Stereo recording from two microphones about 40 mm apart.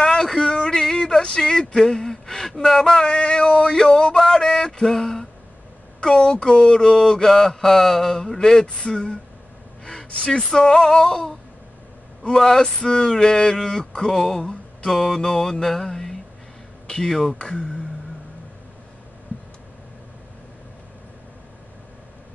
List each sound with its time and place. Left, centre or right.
0.0 s a sound: centre
3.2 s mantra: left
6.0 s speech: centre
6.3 s mantra: left
8.6 s speech: left
9.8 s mantra: left
14.4 s a sound: left
14.9 s mantra: centre
17.4 s speech: left